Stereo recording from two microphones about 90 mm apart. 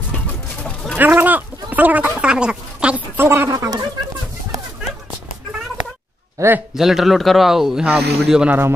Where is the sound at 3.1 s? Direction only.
30° right (ahead or behind).